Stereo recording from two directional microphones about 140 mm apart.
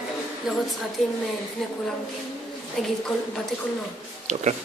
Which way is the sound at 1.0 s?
Centre (ahead or behind).